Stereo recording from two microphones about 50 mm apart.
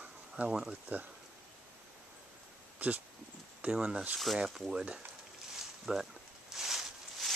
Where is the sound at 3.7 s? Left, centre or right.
Centre.